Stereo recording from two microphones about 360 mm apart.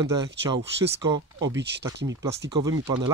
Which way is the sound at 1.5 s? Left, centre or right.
Right.